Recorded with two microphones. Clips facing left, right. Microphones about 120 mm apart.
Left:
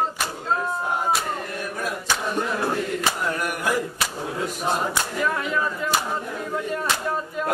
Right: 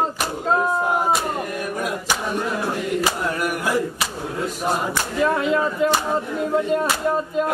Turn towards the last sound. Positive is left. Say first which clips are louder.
# right 6 dB
turn(degrees=-25)  # may be behind; listen again after turning